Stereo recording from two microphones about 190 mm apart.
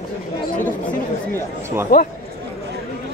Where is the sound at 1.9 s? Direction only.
45° left (ahead or behind).